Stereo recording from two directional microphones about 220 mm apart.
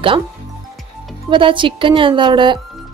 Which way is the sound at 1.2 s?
25° right (ahead or behind).